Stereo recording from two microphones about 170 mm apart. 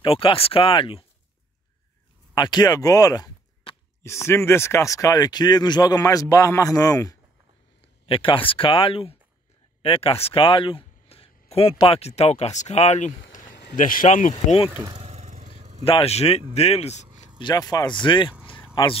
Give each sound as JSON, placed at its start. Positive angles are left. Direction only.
{"t": 0.0, "sound": "speech", "side_deg": 30}
{"t": 2.3, "sound": "speech", "side_deg": 25}
{"t": 8.1, "sound": "speech", "side_deg": 30}
{"t": 13.3, "sound": "a sound", "side_deg": 50}
{"t": 13.7, "sound": "speech", "side_deg": 50}
{"t": 15.0, "sound": "vehicle", "side_deg": -40}
{"t": 15.8, "sound": "speech", "side_deg": 35}
{"t": 17.4, "sound": "speech", "side_deg": 25}